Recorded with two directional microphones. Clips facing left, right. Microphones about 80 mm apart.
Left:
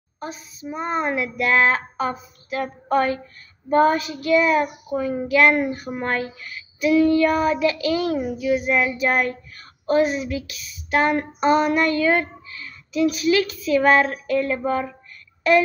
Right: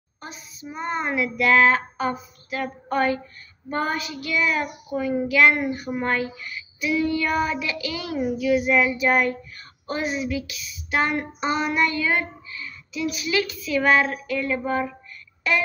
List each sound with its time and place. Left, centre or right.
0.7 s child singing: left
14.2 s speech: left